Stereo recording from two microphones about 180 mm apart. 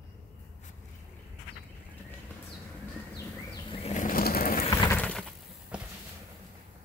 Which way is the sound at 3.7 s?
40° left (ahead or behind).